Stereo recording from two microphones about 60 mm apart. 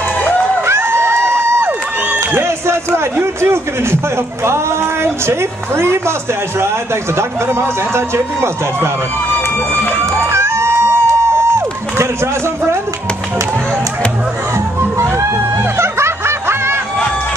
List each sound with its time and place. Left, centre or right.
0.7 s a sound: right
4.5 s a man's voice: right
7.2 s a man's voice: right
10.3 s crowd: right
14.8 s snicker: right